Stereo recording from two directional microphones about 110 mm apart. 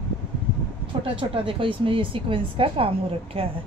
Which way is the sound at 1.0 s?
55° right (ahead or behind).